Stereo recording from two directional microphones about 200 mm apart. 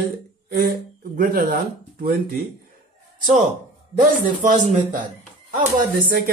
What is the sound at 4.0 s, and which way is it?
A man's voice, 40° right (ahead or behind).